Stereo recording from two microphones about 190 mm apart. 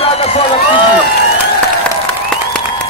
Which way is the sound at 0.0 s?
30° left (ahead or behind).